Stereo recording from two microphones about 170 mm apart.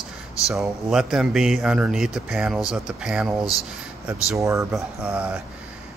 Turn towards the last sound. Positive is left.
turn(degrees=-5)  # may be behind; listen again after turning